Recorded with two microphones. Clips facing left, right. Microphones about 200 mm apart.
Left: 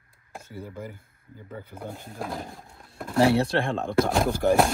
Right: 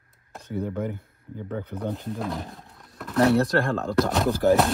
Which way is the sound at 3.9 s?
Centre (ahead or behind).